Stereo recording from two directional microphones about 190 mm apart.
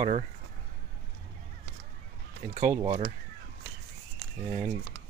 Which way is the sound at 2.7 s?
20° right (ahead or behind).